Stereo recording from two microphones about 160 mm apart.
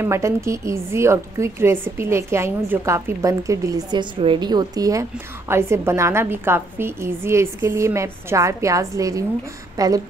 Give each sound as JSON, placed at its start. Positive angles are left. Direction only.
{"t": 0.0, "sound": "a woman's voice", "side_deg": -15}